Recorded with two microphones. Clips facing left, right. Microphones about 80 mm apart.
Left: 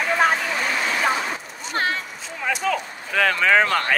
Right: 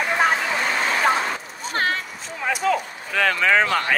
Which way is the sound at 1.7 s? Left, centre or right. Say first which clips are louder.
Right 1 dB; right.